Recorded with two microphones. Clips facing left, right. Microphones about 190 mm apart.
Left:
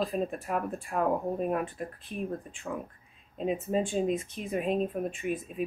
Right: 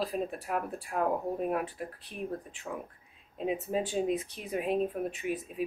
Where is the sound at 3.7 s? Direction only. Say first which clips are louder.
Left 3 dB; 5° right (ahead or behind).